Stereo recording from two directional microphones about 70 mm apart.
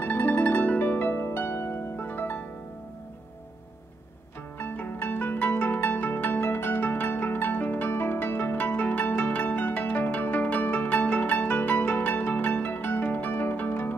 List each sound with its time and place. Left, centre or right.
0.0 s harp: left
4.6 s pizzicato: left